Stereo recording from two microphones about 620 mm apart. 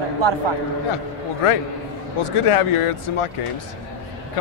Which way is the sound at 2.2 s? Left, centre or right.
Left.